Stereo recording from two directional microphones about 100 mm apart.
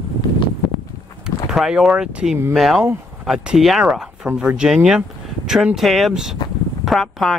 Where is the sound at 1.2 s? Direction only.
5° right (ahead or behind).